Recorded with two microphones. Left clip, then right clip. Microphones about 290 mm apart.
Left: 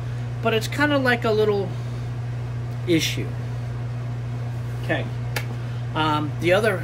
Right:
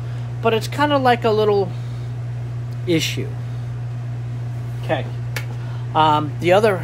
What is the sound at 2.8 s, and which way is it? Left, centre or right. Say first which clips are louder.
Speech: right 2 dB; centre.